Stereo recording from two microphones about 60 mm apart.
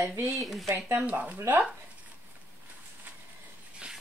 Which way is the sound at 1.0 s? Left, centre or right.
Right.